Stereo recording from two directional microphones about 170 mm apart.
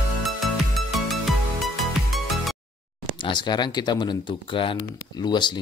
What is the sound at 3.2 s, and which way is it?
Speech, 25° left (ahead or behind).